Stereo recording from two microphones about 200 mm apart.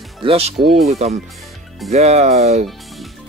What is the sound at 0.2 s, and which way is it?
Speech, 30° right (ahead or behind).